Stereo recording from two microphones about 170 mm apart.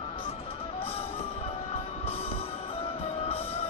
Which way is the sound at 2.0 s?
35° left (ahead or behind).